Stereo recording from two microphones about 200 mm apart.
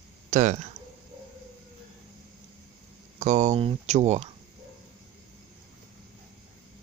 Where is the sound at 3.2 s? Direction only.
35° right (ahead or behind).